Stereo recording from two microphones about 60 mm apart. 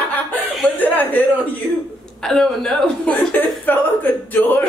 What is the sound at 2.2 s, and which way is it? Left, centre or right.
Speech, centre.